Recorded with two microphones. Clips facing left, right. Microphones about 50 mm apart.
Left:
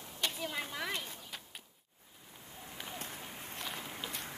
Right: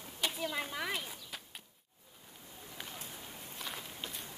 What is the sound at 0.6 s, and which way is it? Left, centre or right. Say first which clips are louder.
Speech: right 1 dB; centre.